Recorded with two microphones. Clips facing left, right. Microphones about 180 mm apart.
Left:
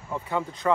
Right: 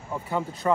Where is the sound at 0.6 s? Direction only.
20° right (ahead or behind).